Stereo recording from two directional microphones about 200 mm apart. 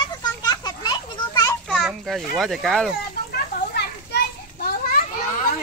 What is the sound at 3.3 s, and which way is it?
Children playing, 55° left (ahead or behind).